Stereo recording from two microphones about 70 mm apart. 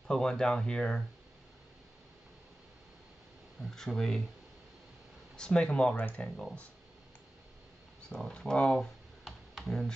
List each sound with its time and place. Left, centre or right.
0.1 s speech: centre
3.7 s speech: centre
5.3 s speech: centre
5.9 s speech: left
8.1 s speech: centre
9.2 s computer keyboard: centre